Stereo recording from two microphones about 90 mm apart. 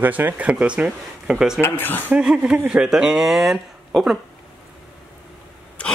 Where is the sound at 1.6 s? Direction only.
25° left (ahead or behind).